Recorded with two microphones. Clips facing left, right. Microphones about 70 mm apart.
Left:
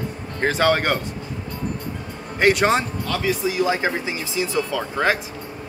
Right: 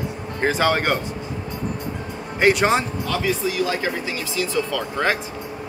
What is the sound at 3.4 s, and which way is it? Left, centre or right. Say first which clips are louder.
Speech: left 2 dB; centre.